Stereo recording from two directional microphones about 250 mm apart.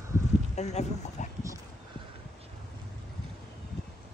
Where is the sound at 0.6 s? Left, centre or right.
Left.